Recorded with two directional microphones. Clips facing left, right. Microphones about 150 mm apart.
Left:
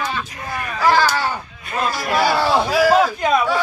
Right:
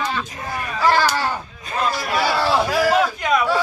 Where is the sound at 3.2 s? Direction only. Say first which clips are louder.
Left 2 dB; 30° left (ahead or behind).